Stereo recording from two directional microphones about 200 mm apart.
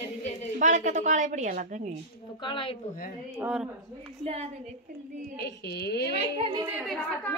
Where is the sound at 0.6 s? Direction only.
40° right (ahead or behind).